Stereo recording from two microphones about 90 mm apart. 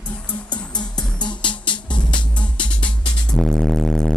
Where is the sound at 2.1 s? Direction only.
10° left (ahead or behind).